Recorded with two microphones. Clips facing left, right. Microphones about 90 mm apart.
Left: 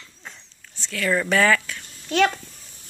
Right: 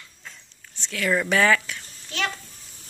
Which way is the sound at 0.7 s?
20° right (ahead or behind).